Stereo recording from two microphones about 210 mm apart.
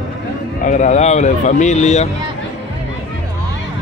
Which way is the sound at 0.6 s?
35° left (ahead or behind).